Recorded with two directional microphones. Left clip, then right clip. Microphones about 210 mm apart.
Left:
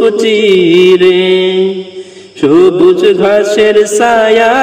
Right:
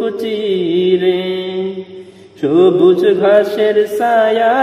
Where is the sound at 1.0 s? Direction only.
35° left (ahead or behind).